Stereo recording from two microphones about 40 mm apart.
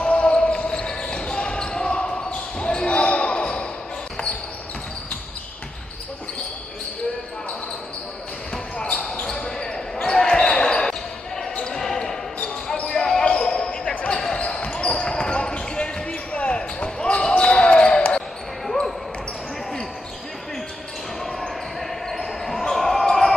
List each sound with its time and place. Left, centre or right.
0.0 s basketball bounce: left
8.7 s a sound: left
10.0 s basketball bounce: centre
21.2 s basketball bounce: centre